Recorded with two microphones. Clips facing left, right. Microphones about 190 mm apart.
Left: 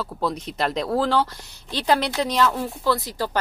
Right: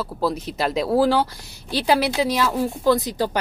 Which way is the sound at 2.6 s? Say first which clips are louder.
Right 5 dB; 20° right (ahead or behind).